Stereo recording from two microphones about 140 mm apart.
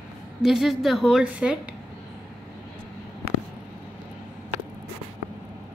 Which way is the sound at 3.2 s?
45° right (ahead or behind).